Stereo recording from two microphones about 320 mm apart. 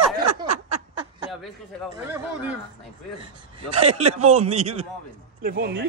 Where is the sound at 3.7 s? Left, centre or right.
Centre.